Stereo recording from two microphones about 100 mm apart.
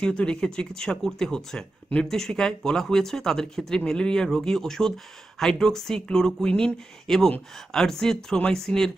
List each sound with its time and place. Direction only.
0.0 s speech: 10° left (ahead or behind)